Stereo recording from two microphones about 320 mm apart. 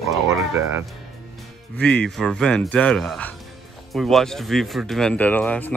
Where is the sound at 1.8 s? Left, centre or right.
Centre.